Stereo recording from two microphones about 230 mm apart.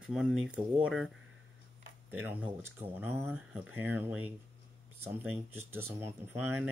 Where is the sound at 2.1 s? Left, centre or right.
Centre.